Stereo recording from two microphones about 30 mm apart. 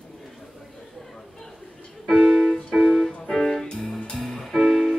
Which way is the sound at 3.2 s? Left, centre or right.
Centre.